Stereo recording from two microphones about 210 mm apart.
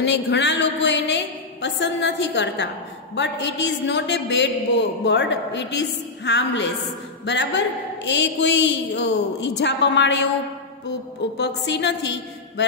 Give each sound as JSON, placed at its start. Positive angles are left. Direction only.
{"t": 0.0, "sound": "a woman's voice", "side_deg": 55}
{"t": 11.3, "sound": "a woman's voice", "side_deg": 55}